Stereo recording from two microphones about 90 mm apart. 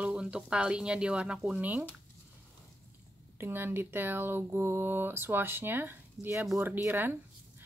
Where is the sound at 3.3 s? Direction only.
25° right (ahead or behind).